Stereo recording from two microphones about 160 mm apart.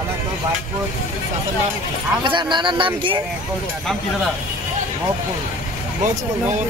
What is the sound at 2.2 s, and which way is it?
Speech, 30° right (ahead or behind).